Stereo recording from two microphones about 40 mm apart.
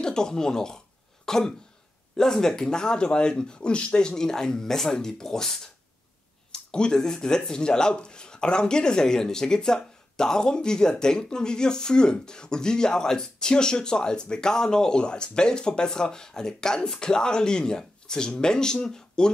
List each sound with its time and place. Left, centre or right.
0.0 s speech: centre
4.1 s speech: centre